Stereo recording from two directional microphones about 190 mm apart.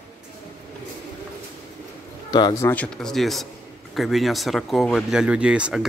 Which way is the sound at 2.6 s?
5° left (ahead or behind).